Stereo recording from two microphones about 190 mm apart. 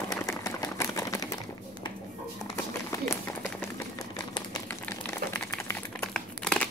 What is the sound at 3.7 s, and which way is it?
Typewriter, 20° left (ahead or behind).